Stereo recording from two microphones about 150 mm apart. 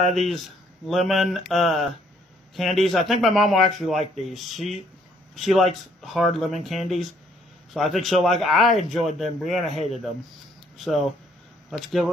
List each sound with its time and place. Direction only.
0.8 s a man's voice: centre (ahead or behind)
9.7 s a man's voice: 45° left (ahead or behind)
10.8 s a man's voice: centre (ahead or behind)